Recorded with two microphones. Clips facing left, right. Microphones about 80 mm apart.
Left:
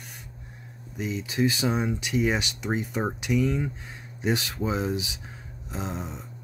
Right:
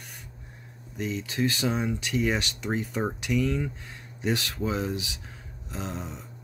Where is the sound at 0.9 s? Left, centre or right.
Centre.